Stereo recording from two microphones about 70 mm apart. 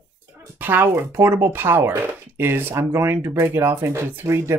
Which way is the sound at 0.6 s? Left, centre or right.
Right.